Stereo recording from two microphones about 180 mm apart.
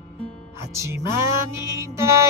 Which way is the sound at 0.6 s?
15° right (ahead or behind).